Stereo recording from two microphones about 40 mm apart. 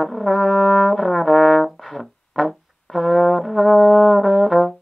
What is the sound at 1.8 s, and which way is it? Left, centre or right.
Music, centre.